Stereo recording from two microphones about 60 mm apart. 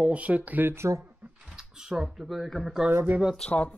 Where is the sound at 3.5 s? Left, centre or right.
Left.